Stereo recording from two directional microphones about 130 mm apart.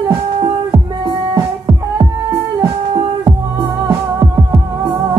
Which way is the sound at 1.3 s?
35° right (ahead or behind).